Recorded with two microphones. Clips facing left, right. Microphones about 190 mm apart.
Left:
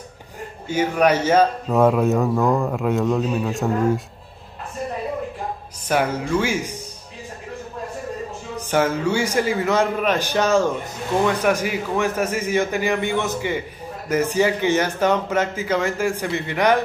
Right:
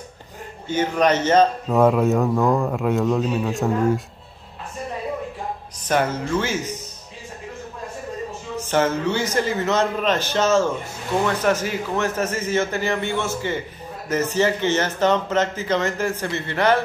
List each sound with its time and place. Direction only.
0.7 s a man's voice: 10° left (ahead or behind)
5.9 s speech: 10° left (ahead or behind)
8.6 s speech: 10° left (ahead or behind)